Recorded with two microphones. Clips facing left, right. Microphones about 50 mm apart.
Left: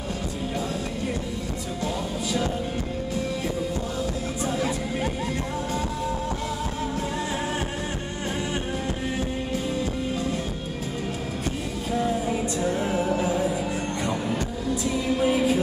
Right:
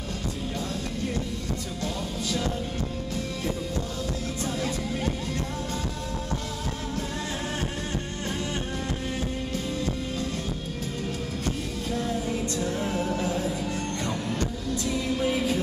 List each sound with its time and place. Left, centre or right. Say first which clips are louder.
4.5 s music: left 3 dB; centre
11.9 s music: left 4 dB; centre
14.9 s music: left 3 dB; centre